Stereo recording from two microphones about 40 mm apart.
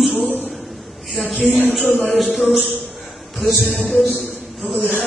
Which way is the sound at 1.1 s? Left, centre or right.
Centre.